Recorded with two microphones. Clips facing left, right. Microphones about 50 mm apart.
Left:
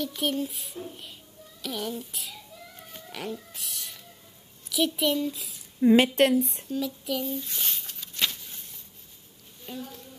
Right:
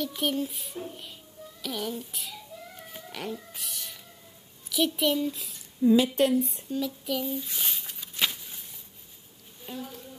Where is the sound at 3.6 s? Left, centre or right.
Centre.